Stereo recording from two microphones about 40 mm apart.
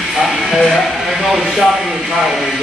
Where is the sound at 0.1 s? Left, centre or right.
Centre.